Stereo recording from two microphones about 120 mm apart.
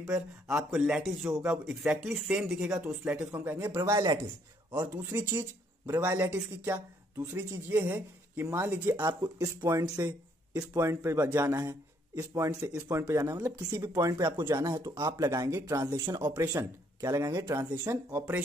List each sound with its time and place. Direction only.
0.1 s speech: 5° right (ahead or behind); by 4.0 s 20° right (ahead or behind)
4.0 s speech: 35° right (ahead or behind)
5.1 s speech: 20° right (ahead or behind)
9.0 s speech: 30° right (ahead or behind)